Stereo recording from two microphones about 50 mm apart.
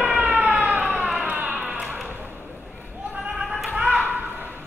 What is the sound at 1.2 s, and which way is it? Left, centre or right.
Music, right.